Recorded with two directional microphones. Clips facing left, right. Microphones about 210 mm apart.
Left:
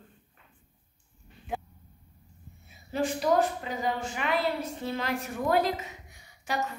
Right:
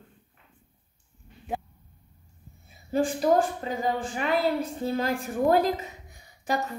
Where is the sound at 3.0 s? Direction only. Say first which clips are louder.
Right 3 dB; 30° right (ahead or behind).